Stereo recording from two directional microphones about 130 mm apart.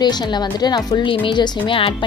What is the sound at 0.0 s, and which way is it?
Speech, 35° left (ahead or behind).